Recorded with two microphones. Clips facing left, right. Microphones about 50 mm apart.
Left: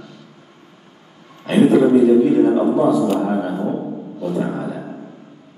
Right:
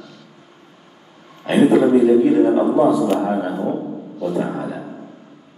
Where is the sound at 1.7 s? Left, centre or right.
Centre.